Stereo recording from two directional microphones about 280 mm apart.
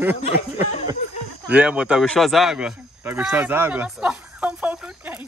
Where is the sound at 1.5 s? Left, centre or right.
Centre.